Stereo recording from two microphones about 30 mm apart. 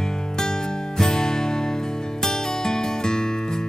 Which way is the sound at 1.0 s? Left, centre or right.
Left.